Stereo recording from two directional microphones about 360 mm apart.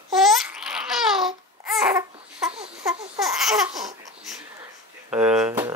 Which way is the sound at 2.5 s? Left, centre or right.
Centre.